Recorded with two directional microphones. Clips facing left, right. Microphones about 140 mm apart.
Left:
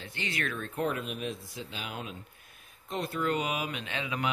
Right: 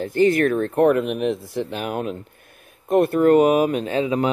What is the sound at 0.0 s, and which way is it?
Speech, 45° right (ahead or behind).